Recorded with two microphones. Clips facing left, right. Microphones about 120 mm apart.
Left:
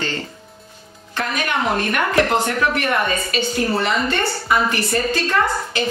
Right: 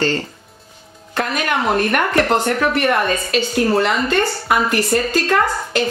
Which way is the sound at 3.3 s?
45° right (ahead or behind).